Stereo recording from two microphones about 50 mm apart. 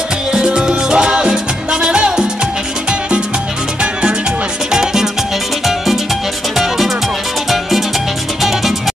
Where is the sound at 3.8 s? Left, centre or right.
Centre.